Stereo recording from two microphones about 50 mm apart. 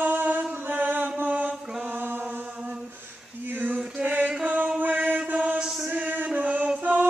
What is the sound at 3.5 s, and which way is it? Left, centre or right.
Male singing, right.